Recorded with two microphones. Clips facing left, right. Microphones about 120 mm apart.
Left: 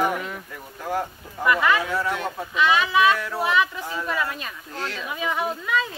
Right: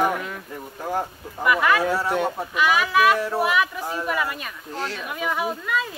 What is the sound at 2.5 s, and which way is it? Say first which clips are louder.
Speech: left 3 dB; 5° right (ahead or behind).